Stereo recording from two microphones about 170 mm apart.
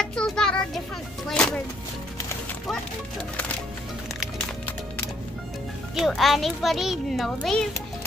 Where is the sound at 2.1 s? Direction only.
15° left (ahead or behind).